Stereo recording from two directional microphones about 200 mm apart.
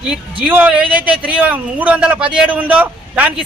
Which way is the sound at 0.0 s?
5° right (ahead or behind).